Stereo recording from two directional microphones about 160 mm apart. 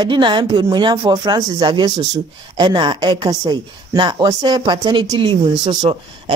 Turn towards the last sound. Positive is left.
turn(degrees=-35)  # may be behind; listen again after turning